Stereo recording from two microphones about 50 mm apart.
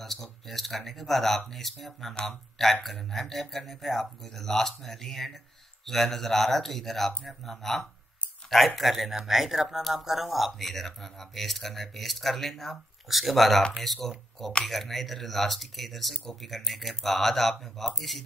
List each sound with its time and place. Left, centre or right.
0.0 s speech: centre